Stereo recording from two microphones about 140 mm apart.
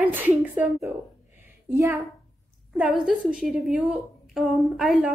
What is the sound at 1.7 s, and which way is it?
Speech, 20° right (ahead or behind).